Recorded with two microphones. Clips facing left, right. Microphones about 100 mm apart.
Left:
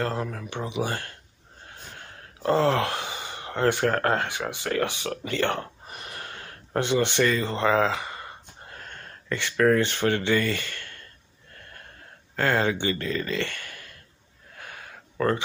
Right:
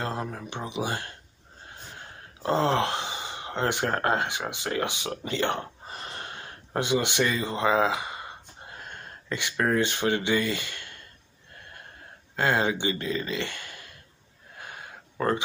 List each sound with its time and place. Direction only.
0.0 s speech: 20° right (ahead or behind)
12.4 s speech: 20° right (ahead or behind)
14.6 s a sound: 25° right (ahead or behind)